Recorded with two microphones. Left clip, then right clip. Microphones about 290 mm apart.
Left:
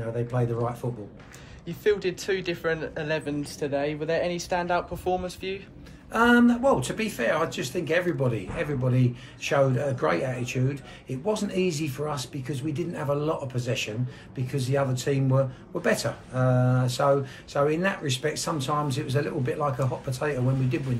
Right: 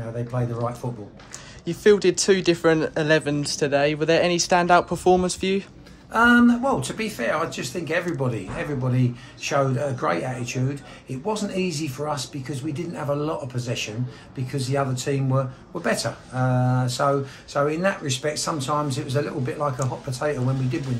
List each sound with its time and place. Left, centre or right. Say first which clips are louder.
0.3 s speech: even; centre
1.7 s speech: right 8 dB; right
6.1 s speech: right 3 dB; centre